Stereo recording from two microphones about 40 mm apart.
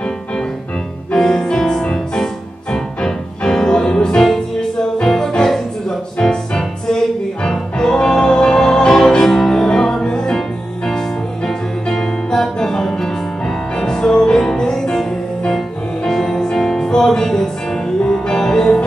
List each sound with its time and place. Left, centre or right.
1.1 s music: centre
11.4 s music: centre